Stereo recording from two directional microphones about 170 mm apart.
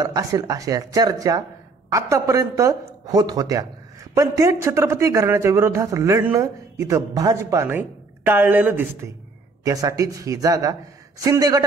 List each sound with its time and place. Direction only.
0.0 s a man's voice: 20° right (ahead or behind)